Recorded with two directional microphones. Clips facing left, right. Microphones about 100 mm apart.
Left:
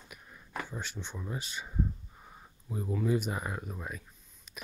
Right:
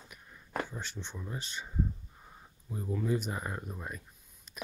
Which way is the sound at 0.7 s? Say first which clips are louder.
Left 2 dB; 15° left (ahead or behind).